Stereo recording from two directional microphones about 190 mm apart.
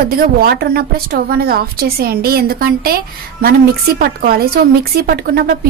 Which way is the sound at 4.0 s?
50° right (ahead or behind).